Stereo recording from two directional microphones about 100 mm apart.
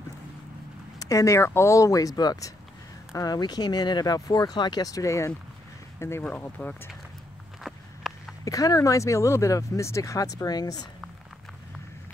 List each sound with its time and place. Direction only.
0.9 s speech: 35° left (ahead or behind)
6.2 s speech: 15° left (ahead or behind)
7.6 s a sound: centre (ahead or behind)
8.5 s speech: 35° left (ahead or behind)